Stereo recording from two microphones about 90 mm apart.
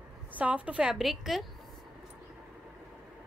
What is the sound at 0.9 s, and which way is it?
Speech, 5° right (ahead or behind).